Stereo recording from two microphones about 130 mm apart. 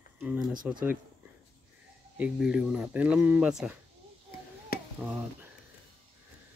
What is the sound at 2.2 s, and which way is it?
Speech, 5° right (ahead or behind).